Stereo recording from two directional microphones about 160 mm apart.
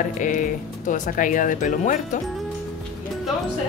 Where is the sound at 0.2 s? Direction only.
55° left (ahead or behind).